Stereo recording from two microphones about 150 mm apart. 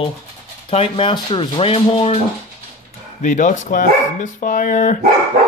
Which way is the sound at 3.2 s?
55° left (ahead or behind).